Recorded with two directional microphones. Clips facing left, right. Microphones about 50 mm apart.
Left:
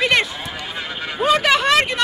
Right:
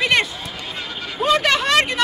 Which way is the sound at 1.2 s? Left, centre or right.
Centre.